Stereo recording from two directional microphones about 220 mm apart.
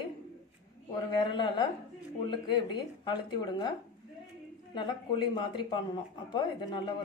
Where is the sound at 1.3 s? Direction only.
20° left (ahead or behind).